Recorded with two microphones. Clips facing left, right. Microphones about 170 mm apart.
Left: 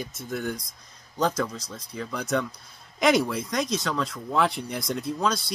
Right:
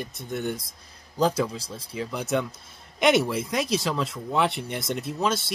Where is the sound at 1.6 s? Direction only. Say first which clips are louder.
Right 2 dB; 30° right (ahead or behind).